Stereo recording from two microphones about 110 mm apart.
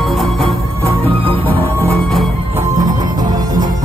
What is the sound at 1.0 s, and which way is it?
Music, 60° right (ahead or behind).